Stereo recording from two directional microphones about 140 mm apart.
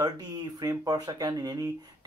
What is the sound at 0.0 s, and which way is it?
Speech, 25° right (ahead or behind).